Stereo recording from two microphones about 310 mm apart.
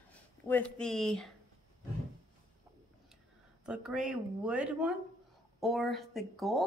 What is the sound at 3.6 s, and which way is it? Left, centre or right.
Speech, centre.